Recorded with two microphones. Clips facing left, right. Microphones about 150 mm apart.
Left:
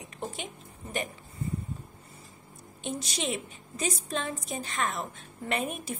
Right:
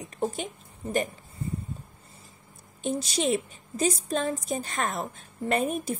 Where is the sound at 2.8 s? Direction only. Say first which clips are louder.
Right 6 dB; 35° right (ahead or behind).